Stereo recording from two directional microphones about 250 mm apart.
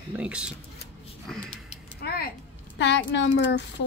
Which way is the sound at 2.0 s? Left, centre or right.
Left.